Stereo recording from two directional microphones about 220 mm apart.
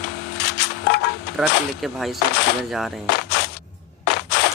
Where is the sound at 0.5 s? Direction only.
50° left (ahead or behind).